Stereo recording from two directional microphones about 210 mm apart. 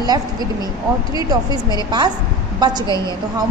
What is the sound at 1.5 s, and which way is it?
A woman's voice, 20° right (ahead or behind).